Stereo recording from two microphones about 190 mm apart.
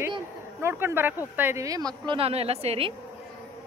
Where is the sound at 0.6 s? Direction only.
10° right (ahead or behind); by 2.9 s 30° right (ahead or behind).